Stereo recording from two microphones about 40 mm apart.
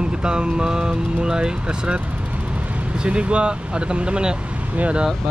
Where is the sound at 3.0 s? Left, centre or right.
Right.